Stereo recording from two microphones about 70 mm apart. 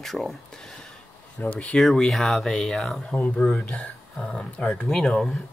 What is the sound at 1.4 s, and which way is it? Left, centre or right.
Speech, centre.